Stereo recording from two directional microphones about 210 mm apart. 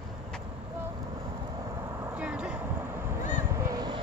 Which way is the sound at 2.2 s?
5° right (ahead or behind).